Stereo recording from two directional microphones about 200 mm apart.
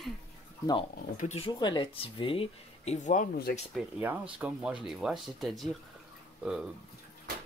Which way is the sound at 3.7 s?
5° right (ahead or behind).